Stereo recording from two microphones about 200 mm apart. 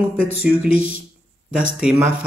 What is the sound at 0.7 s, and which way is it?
Speech, 40° right (ahead or behind).